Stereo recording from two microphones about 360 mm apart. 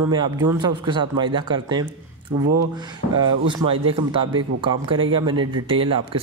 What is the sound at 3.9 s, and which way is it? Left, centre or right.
Speech, centre.